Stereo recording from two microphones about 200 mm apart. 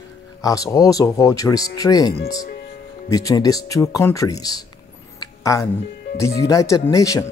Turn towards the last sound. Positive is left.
turn(degrees=15)  # may be behind; listen again after turning